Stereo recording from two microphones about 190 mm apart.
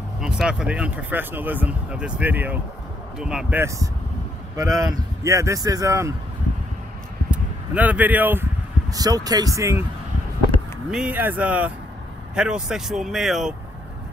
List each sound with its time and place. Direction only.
0.2 s speech: 5° right (ahead or behind)
7.2 s a sound: 5° right (ahead or behind)
8.9 s speech: 20° right (ahead or behind)
10.9 s speech: 5° right (ahead or behind)